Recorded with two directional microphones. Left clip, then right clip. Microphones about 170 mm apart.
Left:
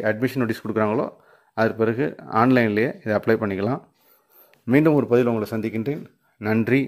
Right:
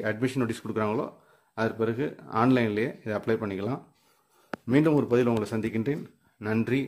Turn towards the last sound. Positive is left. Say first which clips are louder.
# left 7 dB
turn(degrees=30)  # may be behind; listen again after turning